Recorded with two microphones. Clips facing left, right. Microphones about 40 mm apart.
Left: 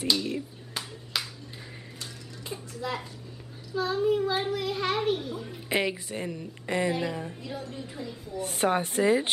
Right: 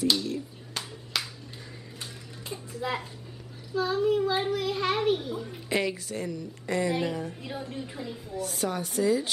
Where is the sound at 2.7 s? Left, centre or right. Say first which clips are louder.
Right 2 dB; centre.